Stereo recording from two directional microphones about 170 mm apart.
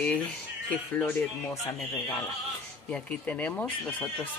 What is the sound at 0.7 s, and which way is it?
Speech, 5° left (ahead or behind).